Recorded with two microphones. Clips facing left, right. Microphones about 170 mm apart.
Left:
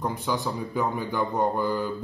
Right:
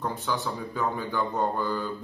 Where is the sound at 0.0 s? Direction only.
15° left (ahead or behind).